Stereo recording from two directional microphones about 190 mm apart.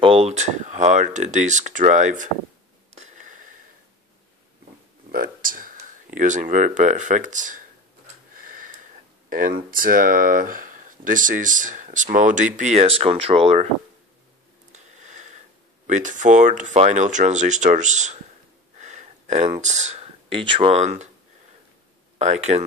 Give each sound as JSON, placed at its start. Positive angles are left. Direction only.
{"t": 0.0, "sound": "speech", "side_deg": -30}
{"t": 2.9, "sound": "wheeze", "side_deg": -40}
{"t": 5.1, "sound": "speech", "side_deg": -45}
{"t": 8.4, "sound": "tick-tock", "side_deg": -45}
{"t": 9.3, "sound": "speech", "side_deg": -45}
{"t": 14.7, "sound": "a sound", "side_deg": -40}
{"t": 15.9, "sound": "speech", "side_deg": -40}
{"t": 22.2, "sound": "speech", "side_deg": -35}